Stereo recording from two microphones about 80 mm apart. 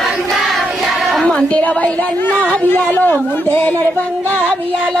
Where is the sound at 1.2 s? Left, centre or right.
Centre.